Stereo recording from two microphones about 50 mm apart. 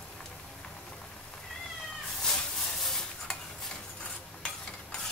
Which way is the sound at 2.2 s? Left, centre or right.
Centre.